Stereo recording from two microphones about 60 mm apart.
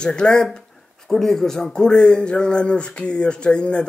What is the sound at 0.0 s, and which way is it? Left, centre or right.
Speech, centre.